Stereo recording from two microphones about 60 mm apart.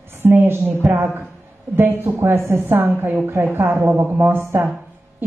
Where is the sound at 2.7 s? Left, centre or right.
Right.